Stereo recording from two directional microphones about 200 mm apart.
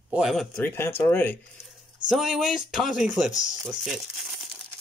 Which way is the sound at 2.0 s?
Centre (ahead or behind).